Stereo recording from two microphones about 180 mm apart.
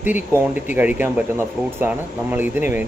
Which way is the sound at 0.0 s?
10° right (ahead or behind).